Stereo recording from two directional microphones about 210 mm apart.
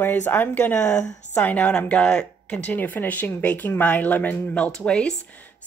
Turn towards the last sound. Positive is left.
turn(degrees=5)  # may be behind; listen again after turning